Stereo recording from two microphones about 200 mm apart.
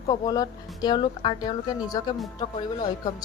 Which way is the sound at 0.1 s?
20° left (ahead or behind).